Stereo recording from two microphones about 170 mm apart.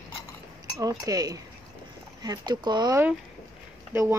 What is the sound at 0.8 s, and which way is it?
Speech, 20° right (ahead or behind).